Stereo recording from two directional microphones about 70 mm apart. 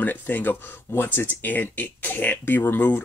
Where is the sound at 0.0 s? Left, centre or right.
Left.